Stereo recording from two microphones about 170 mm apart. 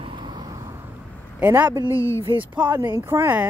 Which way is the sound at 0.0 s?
30° right (ahead or behind).